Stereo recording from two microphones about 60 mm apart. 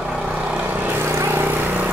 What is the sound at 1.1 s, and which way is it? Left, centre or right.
Vehicle, right.